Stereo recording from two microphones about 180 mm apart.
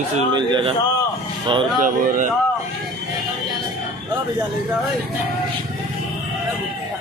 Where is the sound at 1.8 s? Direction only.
50° right (ahead or behind).